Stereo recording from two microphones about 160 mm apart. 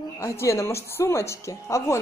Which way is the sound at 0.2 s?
20° left (ahead or behind).